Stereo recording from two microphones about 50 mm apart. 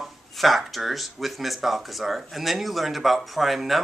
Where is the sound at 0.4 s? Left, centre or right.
Centre.